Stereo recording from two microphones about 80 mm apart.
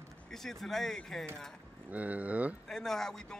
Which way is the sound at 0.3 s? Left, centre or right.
Centre.